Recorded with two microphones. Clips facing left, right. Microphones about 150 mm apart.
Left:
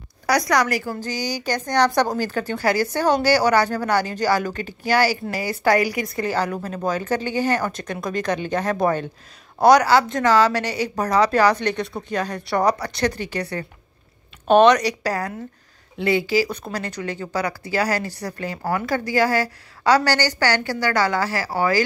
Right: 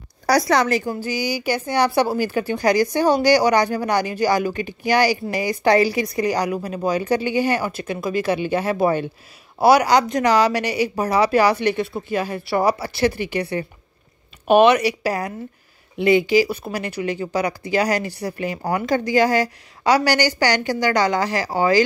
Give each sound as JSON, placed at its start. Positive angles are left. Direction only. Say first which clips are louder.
{"t": 0.3, "sound": "a woman's voice", "louder": "right 2 dB", "side_deg": -30}
{"t": 0.9, "sound": "a woman's voice", "louder": "right 3 dB", "side_deg": -10}